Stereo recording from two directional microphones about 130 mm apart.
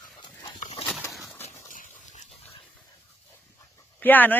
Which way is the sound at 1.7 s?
75° left (ahead or behind).